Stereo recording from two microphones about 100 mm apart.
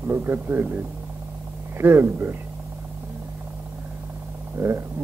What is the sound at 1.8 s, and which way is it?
Speech, 25° right (ahead or behind).